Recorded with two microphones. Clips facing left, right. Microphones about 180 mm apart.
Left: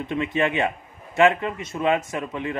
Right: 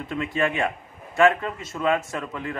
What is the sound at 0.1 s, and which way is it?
A man's voice, 20° left (ahead or behind).